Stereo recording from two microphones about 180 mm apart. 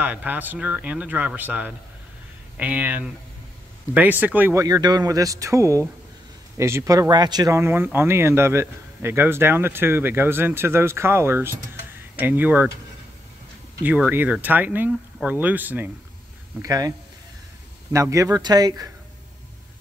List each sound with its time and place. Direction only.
0.0 s speech: 10° right (ahead or behind)
13.8 s speech: 10° right (ahead or behind)
17.9 s speech: 15° right (ahead or behind)